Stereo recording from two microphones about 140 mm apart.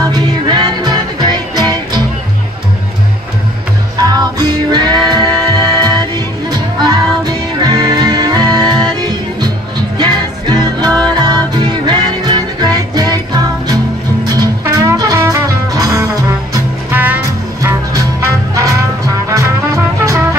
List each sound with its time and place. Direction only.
0.0 s music: 30° right (ahead or behind)
4.0 s music: 30° right (ahead or behind)
7.6 s music: 30° right (ahead or behind)
9.9 s music: 30° right (ahead or behind)
16.9 s music: 10° right (ahead or behind)
18.5 s music: 25° right (ahead or behind)